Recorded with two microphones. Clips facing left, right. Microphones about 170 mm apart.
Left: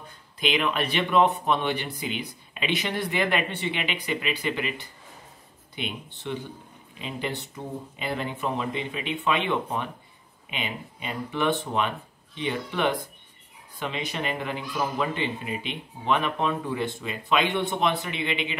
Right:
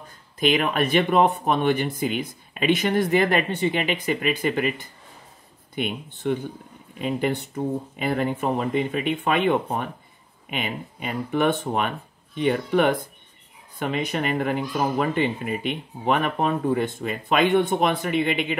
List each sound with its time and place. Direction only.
0.4 s speech: 45° right (ahead or behind)